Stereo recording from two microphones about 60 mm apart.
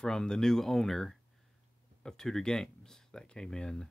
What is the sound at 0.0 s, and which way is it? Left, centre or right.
Speech, centre.